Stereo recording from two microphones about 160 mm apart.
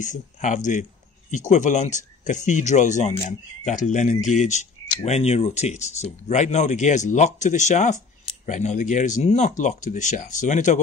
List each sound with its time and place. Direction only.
0.0 s speech: 50° left (ahead or behind)